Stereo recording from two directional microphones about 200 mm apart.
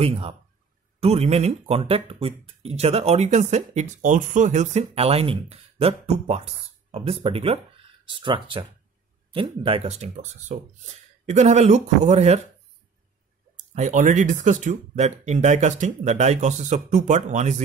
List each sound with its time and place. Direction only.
0.0 s speech: 30° right (ahead or behind)
13.7 s speech: 35° right (ahead or behind)